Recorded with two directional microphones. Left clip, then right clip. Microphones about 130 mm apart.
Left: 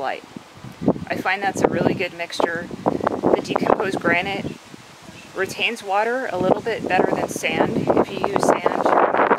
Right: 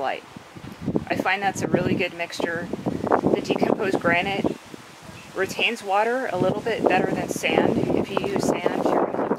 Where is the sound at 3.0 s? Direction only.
30° left (ahead or behind).